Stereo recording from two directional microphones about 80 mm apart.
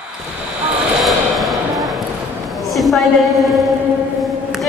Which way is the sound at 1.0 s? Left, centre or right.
Centre.